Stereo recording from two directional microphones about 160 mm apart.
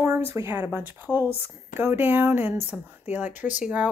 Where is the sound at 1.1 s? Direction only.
10° left (ahead or behind).